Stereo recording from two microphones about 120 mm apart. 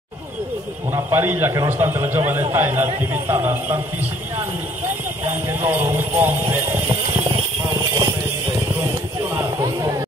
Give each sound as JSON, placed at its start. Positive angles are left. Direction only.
{"t": 0.9, "sound": "speech", "side_deg": -20}
{"t": 5.2, "sound": "jingle bell", "side_deg": -20}
{"t": 9.6, "sound": "a sound", "side_deg": -30}